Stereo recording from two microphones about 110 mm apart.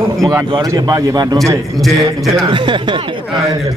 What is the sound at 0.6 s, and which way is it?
Speech, 35° right (ahead or behind).